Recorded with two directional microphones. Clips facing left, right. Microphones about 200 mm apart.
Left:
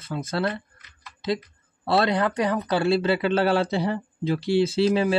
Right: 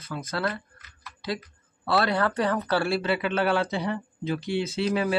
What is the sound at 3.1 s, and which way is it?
Speech, 35° left (ahead or behind).